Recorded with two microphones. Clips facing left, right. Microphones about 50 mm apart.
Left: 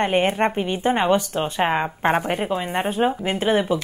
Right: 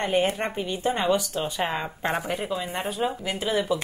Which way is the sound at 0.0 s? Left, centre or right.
Left.